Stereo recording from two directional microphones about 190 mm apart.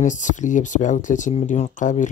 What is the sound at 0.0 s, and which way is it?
Speech, 40° left (ahead or behind).